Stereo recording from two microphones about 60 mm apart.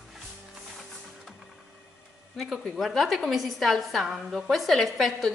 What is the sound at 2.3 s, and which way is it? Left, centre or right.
A woman's voice, centre.